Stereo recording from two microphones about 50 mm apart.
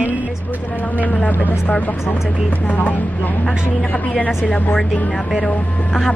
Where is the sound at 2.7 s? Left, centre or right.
Left.